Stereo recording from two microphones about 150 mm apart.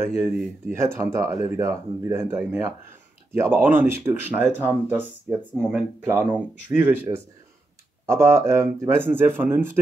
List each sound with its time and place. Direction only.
0.0 s speech: 15° right (ahead or behind)
6.0 s speech: 15° right (ahead or behind)